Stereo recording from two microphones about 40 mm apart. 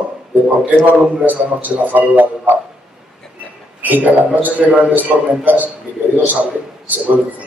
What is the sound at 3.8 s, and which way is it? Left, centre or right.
A man's voice, right.